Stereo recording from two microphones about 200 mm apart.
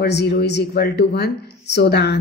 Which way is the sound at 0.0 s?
55° left (ahead or behind).